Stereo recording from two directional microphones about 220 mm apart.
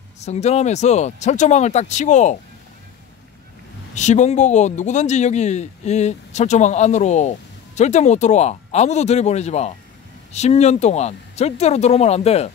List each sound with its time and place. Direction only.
0.2 s speech: 30° left (ahead or behind)
3.9 s speech: 30° left (ahead or behind)